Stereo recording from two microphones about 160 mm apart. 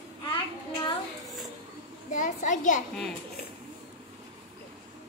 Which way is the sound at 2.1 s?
50° left (ahead or behind).